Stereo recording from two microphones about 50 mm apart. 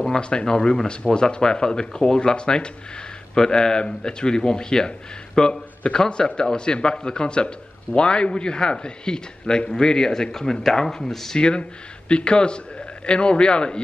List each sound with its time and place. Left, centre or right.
0.0 s speech: centre